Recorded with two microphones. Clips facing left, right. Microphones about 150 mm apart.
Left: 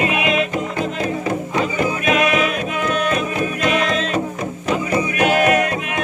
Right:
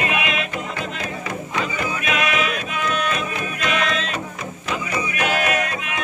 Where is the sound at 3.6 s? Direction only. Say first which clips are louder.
Left 3 dB; 40° left (ahead or behind).